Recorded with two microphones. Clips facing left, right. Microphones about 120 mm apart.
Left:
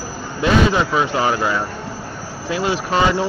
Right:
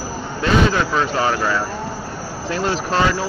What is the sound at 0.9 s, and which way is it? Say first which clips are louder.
Speech: left 1 dB; 20° left (ahead or behind).